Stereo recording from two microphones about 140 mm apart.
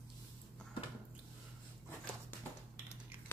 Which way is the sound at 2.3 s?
15° left (ahead or behind).